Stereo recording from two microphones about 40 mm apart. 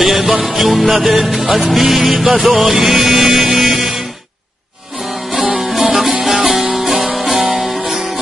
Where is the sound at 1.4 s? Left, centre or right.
Right.